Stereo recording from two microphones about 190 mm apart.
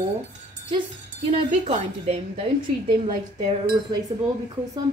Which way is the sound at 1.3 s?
30° right (ahead or behind).